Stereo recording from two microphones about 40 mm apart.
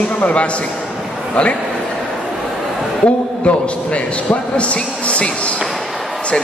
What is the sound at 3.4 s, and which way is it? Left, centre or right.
A man's voice, left.